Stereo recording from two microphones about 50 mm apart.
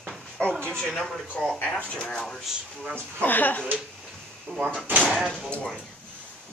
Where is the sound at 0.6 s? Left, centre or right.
Centre.